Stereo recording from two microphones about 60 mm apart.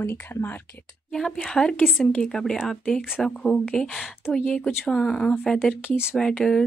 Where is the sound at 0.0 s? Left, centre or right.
Left.